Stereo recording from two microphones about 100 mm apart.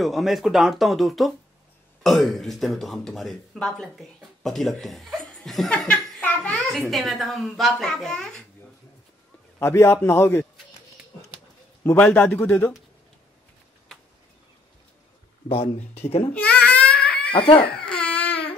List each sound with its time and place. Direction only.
0.0 s speech: centre (ahead or behind)
5.9 s a sound: 15° left (ahead or behind)
6.5 s speech: 5° left (ahead or behind)
9.6 s a man's voice: 25° left (ahead or behind)
11.8 s a man's voice: 20° left (ahead or behind)
15.4 s speech: 65° left (ahead or behind); by 16.3 s 90° left
16.3 s baby cry: 15° left (ahead or behind)
17.3 s speech: 60° left (ahead or behind)
17.7 s baby cry: 10° left (ahead or behind)